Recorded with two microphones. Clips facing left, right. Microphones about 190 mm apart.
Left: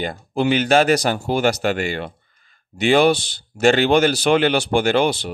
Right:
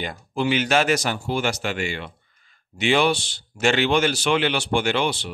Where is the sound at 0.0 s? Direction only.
35° left (ahead or behind).